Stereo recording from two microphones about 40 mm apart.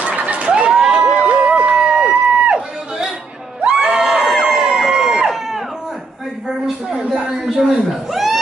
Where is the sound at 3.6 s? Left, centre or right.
Centre.